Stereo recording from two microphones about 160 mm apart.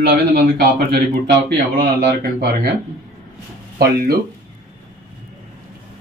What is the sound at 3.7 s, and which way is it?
Speech, 65° right (ahead or behind).